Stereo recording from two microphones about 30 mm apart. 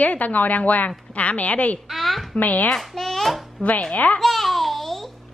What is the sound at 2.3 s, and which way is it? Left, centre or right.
Speech, left.